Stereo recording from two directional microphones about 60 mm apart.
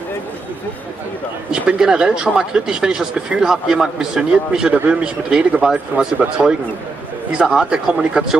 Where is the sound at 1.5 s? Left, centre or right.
Centre.